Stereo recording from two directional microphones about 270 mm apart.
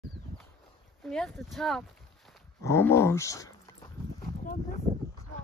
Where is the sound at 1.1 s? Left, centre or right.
Centre.